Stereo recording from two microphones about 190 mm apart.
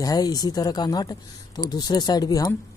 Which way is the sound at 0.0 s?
20° left (ahead or behind).